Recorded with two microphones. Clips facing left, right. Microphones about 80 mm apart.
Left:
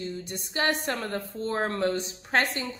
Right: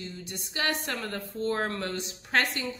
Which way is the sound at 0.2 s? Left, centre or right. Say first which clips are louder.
Left 2 dB; left.